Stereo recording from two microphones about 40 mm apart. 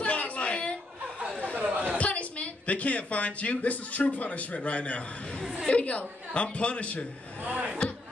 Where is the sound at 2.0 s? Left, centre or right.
Left.